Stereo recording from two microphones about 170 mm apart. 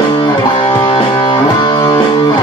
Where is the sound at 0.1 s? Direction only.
25° left (ahead or behind).